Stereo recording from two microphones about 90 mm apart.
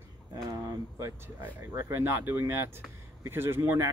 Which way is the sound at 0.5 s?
35° right (ahead or behind).